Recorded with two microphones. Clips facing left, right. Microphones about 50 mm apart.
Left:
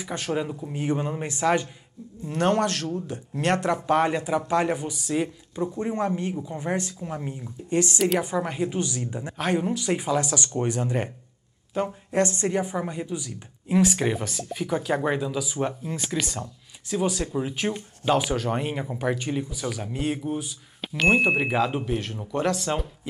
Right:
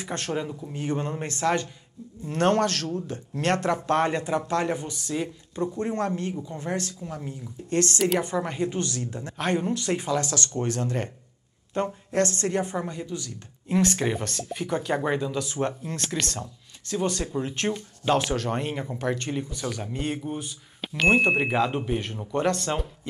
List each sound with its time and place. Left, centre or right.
0.1 s speech: centre
3.8 s speech: centre
9.4 s speech: centre
11.7 s a woman's voice: centre
12.1 s a woman's voice: centre